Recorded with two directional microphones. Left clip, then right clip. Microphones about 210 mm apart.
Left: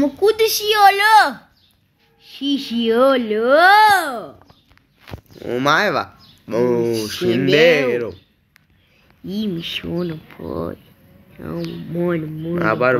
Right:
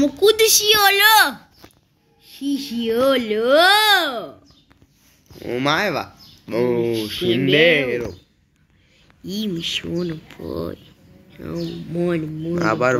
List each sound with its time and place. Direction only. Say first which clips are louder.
0.0 s a child's voice: right 1 dB; 20° left (ahead or behind)
5.4 s speech: left 3 dB; 10° left (ahead or behind)
7.2 s speech: left 2 dB; centre (ahead or behind)
9.2 s a child's voice: even; 20° left (ahead or behind)
12.0 s speech: left 1 dB; 10° left (ahead or behind)
12.5 s speech: left 2 dB; centre (ahead or behind)